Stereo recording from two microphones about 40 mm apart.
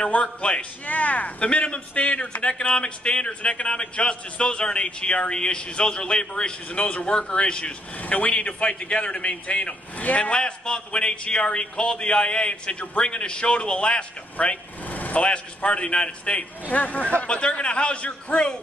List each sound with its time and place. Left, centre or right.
0.0 s a man's voice: left
8.0 s a man's voice: left
10.4 s a man's voice: left
14.3 s speech: left
15.2 s a man's voice: left
16.6 s a man's voice: left